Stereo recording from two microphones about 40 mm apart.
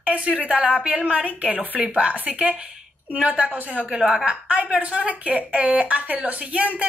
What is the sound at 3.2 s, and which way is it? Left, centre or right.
Speech, right.